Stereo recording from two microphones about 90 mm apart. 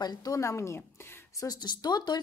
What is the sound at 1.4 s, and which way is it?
Speech, 45° left (ahead or behind).